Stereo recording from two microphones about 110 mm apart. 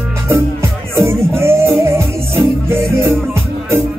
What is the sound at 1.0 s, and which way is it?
Music, 25° right (ahead or behind).